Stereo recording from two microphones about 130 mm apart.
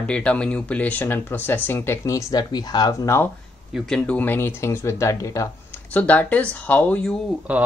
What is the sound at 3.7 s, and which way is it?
Speech, 5° left (ahead or behind).